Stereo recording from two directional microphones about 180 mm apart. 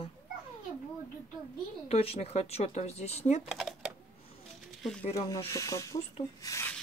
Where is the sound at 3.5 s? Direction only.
Centre (ahead or behind).